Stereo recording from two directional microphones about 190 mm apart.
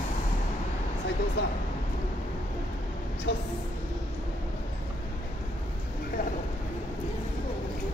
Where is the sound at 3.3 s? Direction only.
65° left (ahead or behind).